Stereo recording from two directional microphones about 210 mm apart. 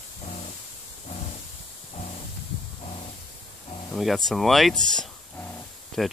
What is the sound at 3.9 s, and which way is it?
Speech, centre (ahead or behind).